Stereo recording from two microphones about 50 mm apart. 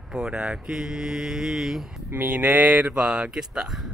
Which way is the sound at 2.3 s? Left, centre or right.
Right.